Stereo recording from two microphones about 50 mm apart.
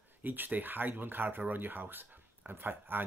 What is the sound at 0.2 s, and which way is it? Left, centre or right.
Speech, right.